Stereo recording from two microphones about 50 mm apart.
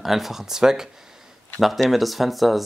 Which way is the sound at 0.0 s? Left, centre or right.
Centre.